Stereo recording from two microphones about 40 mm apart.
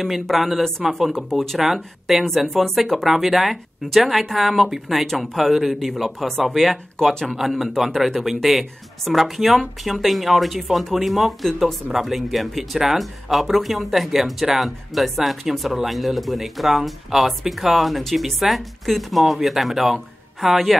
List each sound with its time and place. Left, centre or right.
0.0 s speech: centre